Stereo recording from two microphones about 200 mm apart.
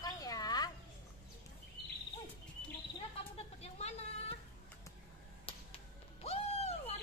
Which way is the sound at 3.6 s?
30° left (ahead or behind).